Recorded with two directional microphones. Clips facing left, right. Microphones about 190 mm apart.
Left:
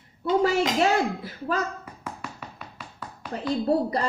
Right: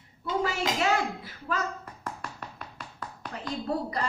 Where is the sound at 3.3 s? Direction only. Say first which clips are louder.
Left 8 dB; 35° left (ahead or behind).